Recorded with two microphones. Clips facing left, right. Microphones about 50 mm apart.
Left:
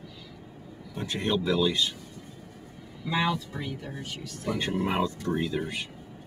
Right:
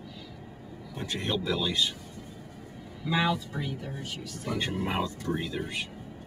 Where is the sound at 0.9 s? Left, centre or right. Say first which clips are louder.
Left 3 dB; centre.